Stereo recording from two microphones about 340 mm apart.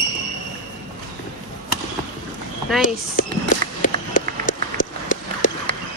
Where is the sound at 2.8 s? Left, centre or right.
Left.